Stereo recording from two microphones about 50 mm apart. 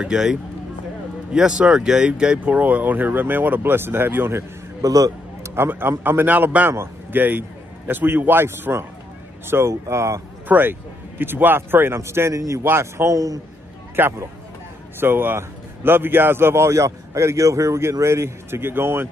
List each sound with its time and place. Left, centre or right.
0.0 s speech: centre
2.4 s speech: right
5.5 s a man's voice: right
10.5 s speech: right
12.0 s speech: right
12.6 s speech: right
14.0 s a man's voice: right